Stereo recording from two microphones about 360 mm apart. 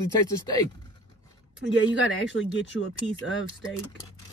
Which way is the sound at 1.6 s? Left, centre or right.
Left.